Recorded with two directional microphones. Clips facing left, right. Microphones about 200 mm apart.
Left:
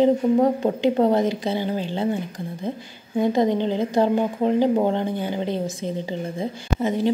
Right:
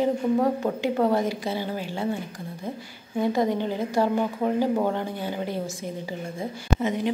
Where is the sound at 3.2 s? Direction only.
25° left (ahead or behind).